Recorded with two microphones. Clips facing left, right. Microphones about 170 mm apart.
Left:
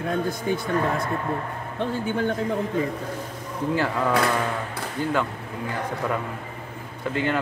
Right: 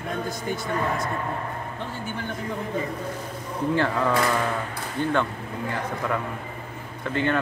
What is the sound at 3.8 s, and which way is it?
Speech, 5° left (ahead or behind).